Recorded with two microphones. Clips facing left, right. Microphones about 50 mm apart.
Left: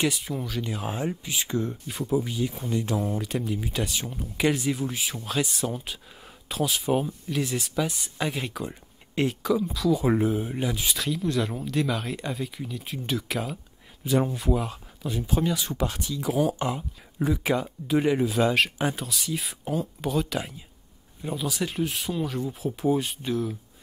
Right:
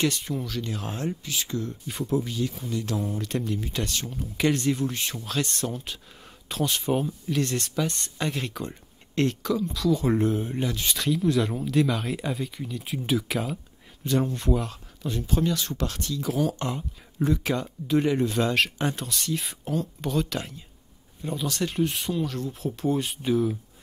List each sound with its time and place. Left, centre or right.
0.0 s speech: centre; by 1.8 s left
1.9 s speech: centre; by 3.0 s left
3.2 s speech: centre